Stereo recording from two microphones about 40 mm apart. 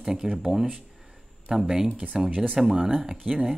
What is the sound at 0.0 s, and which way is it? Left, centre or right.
Speech, centre.